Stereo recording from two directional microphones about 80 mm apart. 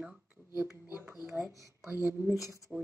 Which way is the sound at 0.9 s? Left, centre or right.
Centre.